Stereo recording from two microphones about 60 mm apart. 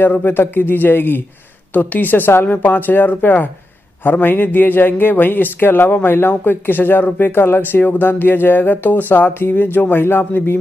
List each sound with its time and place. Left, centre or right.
0.0 s a man's voice: left